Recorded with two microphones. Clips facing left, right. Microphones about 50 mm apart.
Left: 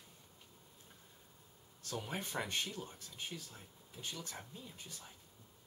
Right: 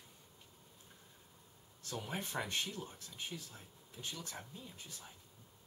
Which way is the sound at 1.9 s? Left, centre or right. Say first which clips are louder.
Even; centre.